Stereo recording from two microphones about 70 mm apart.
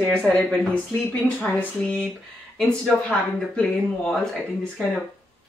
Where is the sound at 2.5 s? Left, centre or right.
Centre.